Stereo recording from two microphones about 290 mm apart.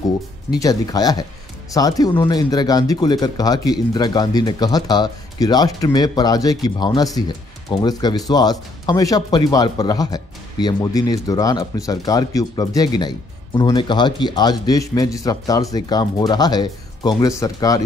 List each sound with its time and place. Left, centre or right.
0.6 s speech: centre